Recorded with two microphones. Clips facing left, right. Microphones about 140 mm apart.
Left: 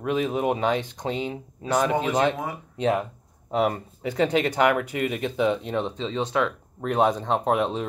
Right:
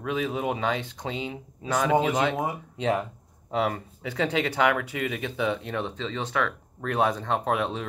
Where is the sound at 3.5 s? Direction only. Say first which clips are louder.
Left 3 dB; 15° left (ahead or behind).